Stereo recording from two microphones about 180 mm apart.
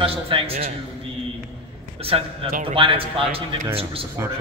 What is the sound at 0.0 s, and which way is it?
Speech, 30° right (ahead or behind).